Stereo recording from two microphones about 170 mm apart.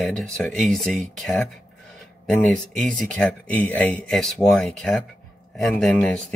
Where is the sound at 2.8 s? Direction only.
5° left (ahead or behind).